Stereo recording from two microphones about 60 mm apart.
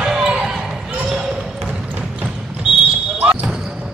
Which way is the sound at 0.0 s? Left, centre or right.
Centre.